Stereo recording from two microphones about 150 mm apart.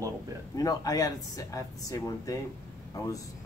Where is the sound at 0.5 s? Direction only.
25° left (ahead or behind).